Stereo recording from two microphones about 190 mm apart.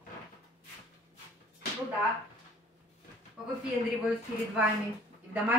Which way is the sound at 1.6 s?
60° left (ahead or behind).